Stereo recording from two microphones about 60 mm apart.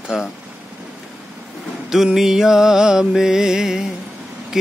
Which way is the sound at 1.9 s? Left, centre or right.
Centre.